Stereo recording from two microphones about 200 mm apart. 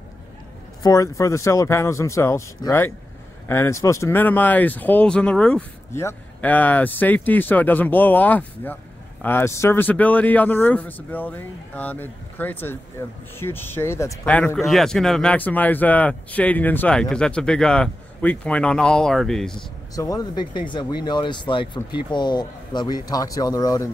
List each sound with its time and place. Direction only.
0.8 s speech: 15° left (ahead or behind)
20.0 s speech: 20° left (ahead or behind)